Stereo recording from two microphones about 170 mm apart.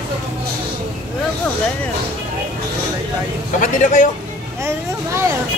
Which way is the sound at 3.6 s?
50° left (ahead or behind).